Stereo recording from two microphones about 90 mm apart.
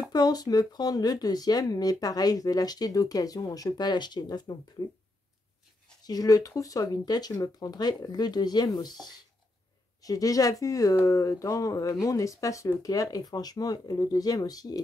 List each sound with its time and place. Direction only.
0.1 s speech: 45° left (ahead or behind)
6.0 s speech: 45° left (ahead or behind)
10.0 s speech: 40° left (ahead or behind)